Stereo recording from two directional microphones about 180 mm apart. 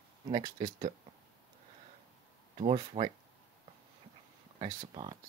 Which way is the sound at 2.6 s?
35° right (ahead or behind).